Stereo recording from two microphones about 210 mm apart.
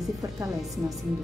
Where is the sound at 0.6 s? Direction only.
Centre (ahead or behind).